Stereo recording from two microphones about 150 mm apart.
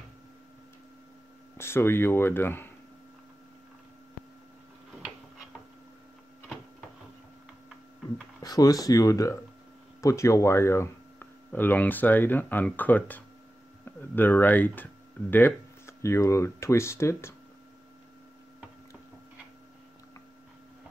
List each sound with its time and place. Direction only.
1.6 s speech: 15° left (ahead or behind)
8.4 s speech: 25° left (ahead or behind)